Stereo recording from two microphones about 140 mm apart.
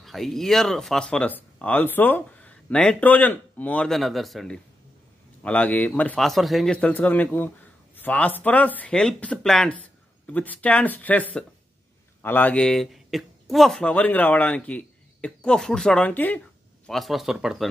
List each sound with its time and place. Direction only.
0.0 s speech: centre (ahead or behind)